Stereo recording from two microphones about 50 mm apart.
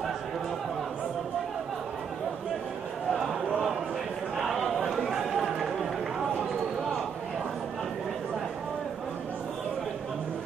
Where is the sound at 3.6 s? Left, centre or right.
Centre.